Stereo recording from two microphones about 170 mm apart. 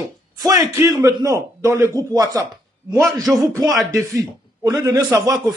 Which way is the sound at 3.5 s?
20° right (ahead or behind).